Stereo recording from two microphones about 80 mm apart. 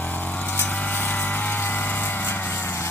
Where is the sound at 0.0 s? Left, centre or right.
Left.